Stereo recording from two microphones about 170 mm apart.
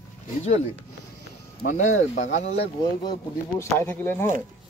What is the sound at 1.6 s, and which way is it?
Speech, 65° left (ahead or behind).